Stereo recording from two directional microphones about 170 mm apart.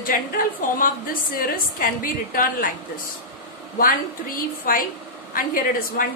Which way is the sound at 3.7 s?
55° left (ahead or behind).